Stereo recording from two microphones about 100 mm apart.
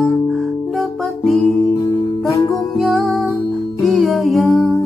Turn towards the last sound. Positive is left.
turn(degrees=0)  # may be behind; listen again after turning